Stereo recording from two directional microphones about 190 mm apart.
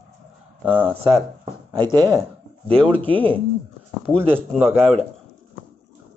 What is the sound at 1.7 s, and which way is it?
Speech, 25° right (ahead or behind).